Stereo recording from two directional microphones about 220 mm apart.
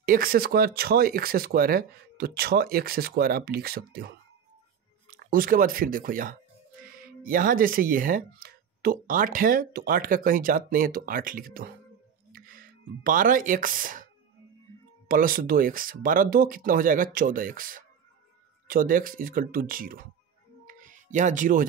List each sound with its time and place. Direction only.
0.0 s speech: 40° right (ahead or behind)
15.0 s speech: 40° right (ahead or behind)
20.6 s a sound: 35° right (ahead or behind)